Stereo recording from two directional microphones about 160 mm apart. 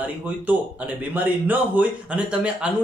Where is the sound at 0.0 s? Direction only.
10° right (ahead or behind).